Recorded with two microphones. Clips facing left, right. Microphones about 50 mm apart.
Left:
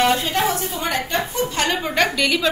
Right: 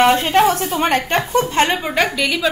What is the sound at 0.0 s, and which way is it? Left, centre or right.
Speech, right.